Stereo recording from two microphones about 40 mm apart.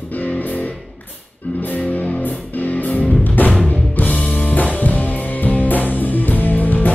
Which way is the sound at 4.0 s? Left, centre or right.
Left.